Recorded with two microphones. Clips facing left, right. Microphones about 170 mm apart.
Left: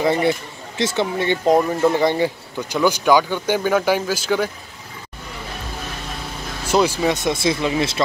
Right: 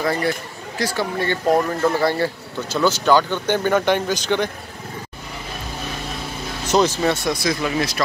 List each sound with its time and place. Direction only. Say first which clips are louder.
0.0 s speech: left 3 dB; 20° left (ahead or behind); by 4.5 s 5° left (ahead or behind)
6.7 s speech: even; 10° left (ahead or behind); by 8.0 s 25° left (ahead or behind)